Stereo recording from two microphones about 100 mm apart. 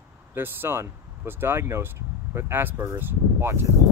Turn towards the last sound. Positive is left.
turn(degrees=-25)  # may be behind; listen again after turning